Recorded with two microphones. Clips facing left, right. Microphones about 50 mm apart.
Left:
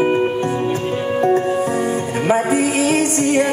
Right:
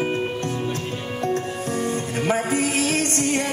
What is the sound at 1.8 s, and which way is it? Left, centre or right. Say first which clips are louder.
Music: left 5 dB; centre.